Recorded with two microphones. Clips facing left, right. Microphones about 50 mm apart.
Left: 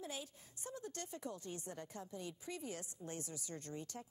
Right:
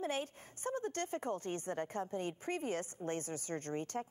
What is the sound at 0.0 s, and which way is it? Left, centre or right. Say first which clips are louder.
A woman's voice: right 10 dB; right.